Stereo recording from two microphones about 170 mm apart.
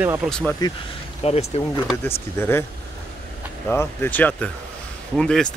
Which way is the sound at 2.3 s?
15° left (ahead or behind).